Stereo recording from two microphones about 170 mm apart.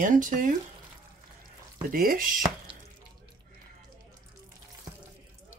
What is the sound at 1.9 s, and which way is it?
Speech, 60° right (ahead or behind).